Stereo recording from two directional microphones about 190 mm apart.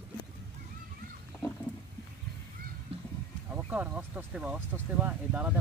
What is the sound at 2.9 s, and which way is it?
Honk, 30° right (ahead or behind).